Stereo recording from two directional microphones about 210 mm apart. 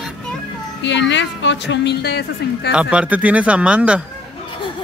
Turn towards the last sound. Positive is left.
turn(degrees=-5)  # may be behind; listen again after turning